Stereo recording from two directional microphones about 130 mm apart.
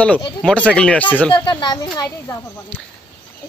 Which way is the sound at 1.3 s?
35° left (ahead or behind).